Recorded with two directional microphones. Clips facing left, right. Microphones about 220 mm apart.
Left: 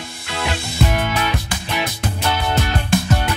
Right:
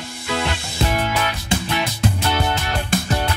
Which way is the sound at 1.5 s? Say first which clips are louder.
Right 7 dB; 25° right (ahead or behind).